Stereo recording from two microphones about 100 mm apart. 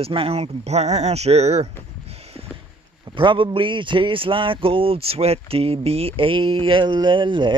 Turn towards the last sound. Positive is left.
turn(degrees=-50)  # may be behind; listen again after turning